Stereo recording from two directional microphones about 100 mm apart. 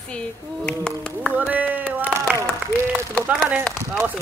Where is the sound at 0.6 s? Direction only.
10° left (ahead or behind).